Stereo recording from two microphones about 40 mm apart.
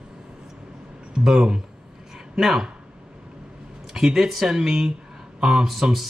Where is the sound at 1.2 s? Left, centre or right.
Centre.